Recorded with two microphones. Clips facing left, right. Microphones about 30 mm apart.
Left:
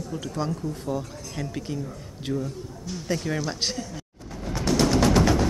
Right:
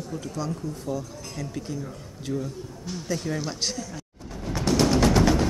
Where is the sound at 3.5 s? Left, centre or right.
Left.